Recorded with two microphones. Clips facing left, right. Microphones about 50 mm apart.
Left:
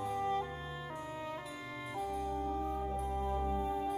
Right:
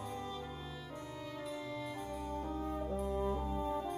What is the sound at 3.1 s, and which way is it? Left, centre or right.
Music, left.